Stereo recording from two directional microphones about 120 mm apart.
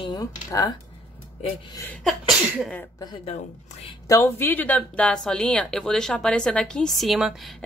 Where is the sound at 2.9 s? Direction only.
35° left (ahead or behind).